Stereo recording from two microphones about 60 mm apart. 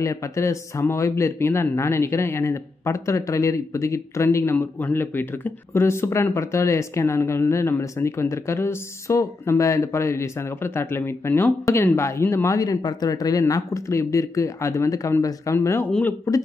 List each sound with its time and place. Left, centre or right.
0.0 s speech: left
4.6 s speech: left
12.4 s speech: left